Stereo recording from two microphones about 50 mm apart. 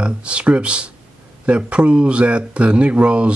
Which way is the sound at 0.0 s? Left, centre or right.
Right.